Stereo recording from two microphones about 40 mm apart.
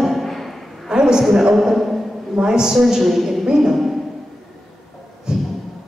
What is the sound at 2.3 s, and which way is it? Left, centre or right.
A woman's voice, centre.